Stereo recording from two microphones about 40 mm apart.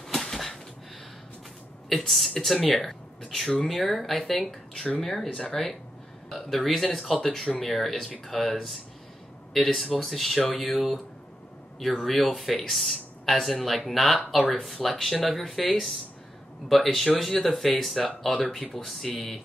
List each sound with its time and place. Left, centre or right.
0.0 s a sound: centre
1.9 s speech: centre
12.0 s speech: centre
18.6 s speech: left
18.9 s speech: centre